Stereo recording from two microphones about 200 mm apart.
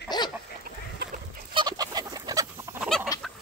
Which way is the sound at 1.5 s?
20° right (ahead or behind).